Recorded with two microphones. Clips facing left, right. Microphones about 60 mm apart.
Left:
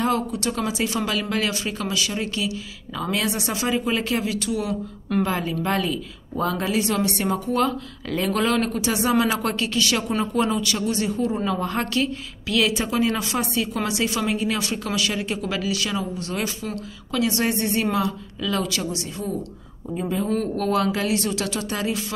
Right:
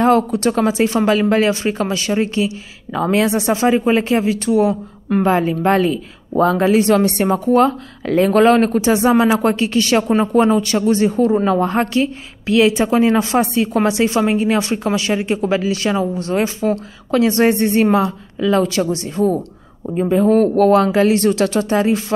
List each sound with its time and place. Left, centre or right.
0.0 s speech: right
11.6 s speech: right